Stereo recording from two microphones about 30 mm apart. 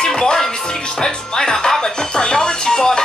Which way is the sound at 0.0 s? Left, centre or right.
Left.